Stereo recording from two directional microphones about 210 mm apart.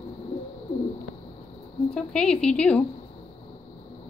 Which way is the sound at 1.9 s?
5° left (ahead or behind).